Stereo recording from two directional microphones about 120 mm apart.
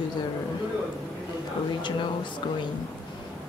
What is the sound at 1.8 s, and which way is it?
Speech, 40° left (ahead or behind).